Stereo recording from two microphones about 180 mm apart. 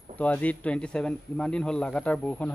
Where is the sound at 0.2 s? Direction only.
10° left (ahead or behind).